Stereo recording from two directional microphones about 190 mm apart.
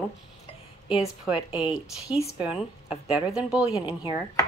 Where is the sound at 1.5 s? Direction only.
25° left (ahead or behind).